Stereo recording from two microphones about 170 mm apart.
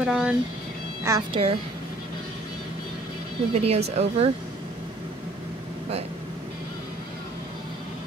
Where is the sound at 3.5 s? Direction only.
35° right (ahead or behind).